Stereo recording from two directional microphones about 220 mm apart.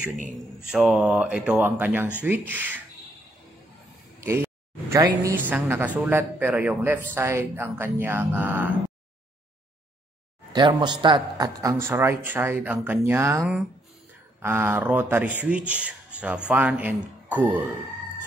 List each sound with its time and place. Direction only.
0.7 s a woman's voice: 5° right (ahead or behind)
4.2 s a woman's voice: 10° right (ahead or behind)
10.5 s a woman's voice: 20° right (ahead or behind)